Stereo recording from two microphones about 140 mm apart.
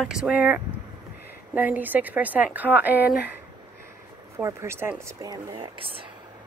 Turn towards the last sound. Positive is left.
turn(degrees=-40)  # may be behind; listen again after turning